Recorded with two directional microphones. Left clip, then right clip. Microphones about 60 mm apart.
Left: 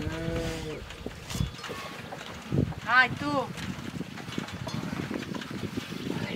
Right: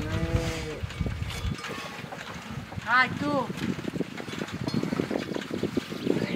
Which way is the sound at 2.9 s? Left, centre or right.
Left.